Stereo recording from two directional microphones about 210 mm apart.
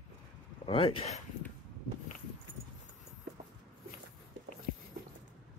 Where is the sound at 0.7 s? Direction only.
25° left (ahead or behind).